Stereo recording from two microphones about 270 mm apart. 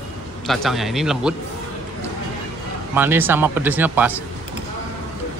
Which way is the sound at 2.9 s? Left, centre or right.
Centre.